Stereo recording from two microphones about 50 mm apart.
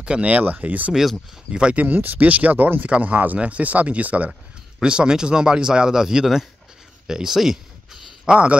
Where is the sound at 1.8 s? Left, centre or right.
Right.